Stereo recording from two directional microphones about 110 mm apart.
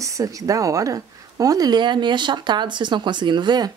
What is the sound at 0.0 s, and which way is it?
Speech, 30° right (ahead or behind).